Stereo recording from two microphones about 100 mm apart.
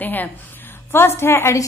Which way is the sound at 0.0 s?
20° left (ahead or behind).